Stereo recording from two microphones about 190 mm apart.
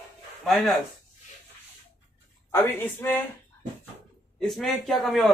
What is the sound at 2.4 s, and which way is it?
Speech, 10° left (ahead or behind).